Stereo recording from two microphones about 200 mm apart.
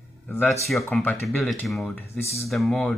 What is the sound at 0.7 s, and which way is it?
Speech, centre (ahead or behind).